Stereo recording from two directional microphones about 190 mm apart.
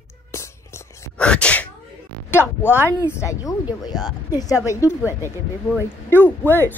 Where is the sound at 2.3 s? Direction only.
10° left (ahead or behind).